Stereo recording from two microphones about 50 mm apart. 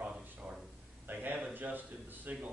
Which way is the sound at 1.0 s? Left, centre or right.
Right.